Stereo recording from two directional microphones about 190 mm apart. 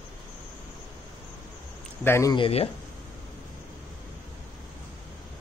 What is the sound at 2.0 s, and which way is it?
Speech, 15° left (ahead or behind).